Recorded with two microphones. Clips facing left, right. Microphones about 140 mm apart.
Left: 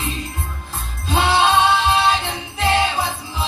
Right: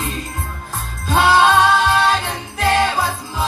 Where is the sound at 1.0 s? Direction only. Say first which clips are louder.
Right 3 dB; 45° right (ahead or behind).